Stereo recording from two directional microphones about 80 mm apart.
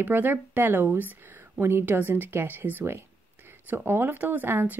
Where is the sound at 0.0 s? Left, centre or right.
Right.